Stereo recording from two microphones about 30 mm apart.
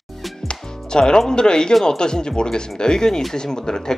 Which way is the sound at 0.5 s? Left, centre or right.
Left.